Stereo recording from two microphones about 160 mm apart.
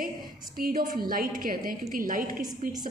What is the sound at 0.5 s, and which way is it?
A woman's voice, 60° right (ahead or behind).